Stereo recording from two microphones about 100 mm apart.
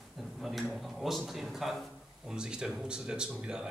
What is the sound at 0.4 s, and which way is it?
Speech, centre (ahead or behind).